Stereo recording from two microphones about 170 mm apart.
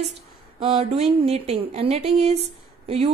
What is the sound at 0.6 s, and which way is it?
A woman's voice, 30° right (ahead or behind).